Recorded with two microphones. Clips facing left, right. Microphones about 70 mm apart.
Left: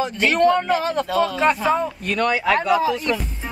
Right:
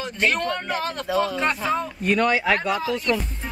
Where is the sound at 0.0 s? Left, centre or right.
Centre.